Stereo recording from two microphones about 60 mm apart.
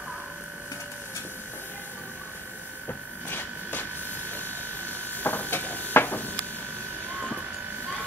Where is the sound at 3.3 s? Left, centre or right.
Left.